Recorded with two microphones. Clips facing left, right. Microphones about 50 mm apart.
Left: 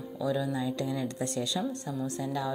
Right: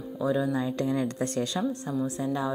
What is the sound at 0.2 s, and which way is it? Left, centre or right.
Speech, right.